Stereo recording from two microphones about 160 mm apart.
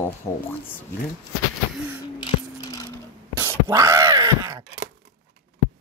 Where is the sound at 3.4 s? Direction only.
20° right (ahead or behind).